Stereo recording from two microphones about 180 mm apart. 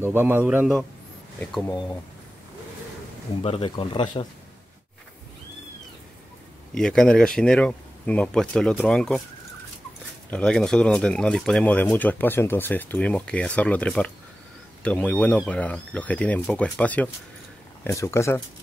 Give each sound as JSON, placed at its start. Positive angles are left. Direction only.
{"t": 0.0, "sound": "a man's voice", "side_deg": -10}
{"t": 1.4, "sound": "speech", "side_deg": 5}
{"t": 3.4, "sound": "speech", "side_deg": 30}
{"t": 6.7, "sound": "speech", "side_deg": 5}
{"t": 10.3, "sound": "speech", "side_deg": 5}